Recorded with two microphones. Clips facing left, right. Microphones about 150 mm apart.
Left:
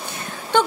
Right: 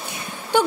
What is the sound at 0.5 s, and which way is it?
Speech, 10° right (ahead or behind).